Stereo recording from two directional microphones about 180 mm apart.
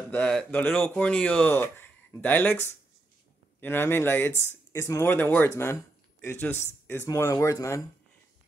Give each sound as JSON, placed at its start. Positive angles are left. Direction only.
{"t": 0.1, "sound": "speech", "side_deg": 5}